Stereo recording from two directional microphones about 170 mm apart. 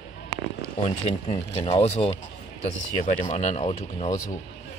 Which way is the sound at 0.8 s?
40° left (ahead or behind).